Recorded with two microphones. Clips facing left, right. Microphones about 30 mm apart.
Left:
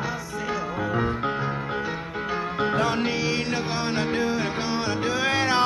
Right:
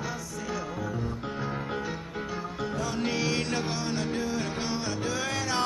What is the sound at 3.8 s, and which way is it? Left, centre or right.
Music, left.